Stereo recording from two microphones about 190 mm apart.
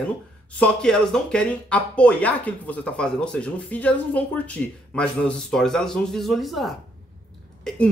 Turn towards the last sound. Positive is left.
turn(degrees=5)  # may be behind; listen again after turning